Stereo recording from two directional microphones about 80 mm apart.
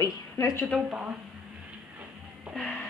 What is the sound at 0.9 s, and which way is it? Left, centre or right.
Speech, centre.